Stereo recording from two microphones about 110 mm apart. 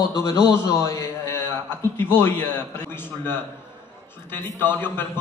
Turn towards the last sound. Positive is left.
turn(degrees=20)  # may be behind; listen again after turning